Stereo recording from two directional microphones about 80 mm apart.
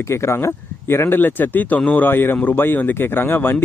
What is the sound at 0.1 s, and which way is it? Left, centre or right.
A man's voice, left.